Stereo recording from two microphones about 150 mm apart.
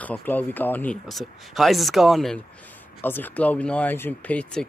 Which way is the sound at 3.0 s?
10° left (ahead or behind).